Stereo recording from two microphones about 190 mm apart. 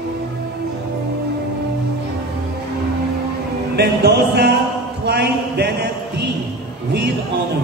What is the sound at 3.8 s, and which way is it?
Music, 60° right (ahead or behind).